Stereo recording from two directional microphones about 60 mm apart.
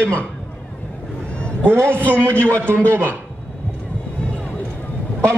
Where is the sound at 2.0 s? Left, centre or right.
Left.